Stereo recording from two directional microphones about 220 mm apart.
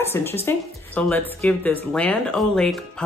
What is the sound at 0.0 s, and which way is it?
Speech, 10° left (ahead or behind).